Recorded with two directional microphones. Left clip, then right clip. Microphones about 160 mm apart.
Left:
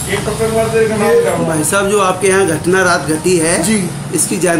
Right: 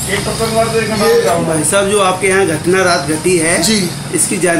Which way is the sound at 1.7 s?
5° left (ahead or behind).